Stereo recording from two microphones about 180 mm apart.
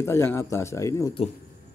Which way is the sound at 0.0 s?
15° left (ahead or behind).